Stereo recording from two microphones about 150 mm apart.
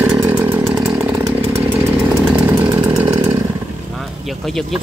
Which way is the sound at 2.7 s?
20° right (ahead or behind).